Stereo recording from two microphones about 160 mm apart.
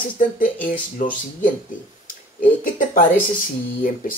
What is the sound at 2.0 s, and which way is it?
Speech, 60° left (ahead or behind).